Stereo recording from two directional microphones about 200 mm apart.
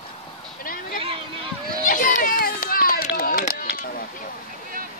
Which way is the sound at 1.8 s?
40° left (ahead or behind).